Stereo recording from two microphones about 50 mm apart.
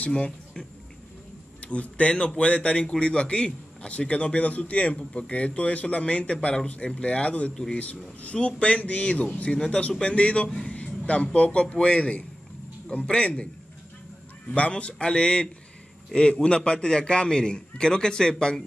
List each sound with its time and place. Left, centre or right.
0.1 s speech: centre
1.6 s a man's voice: left
10.7 s music: left
11.3 s a man's voice: left
14.5 s a man's voice: left
16.4 s a man's voice: left